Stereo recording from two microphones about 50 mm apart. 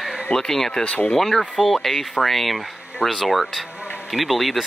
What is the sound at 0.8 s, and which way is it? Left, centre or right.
Speech, left.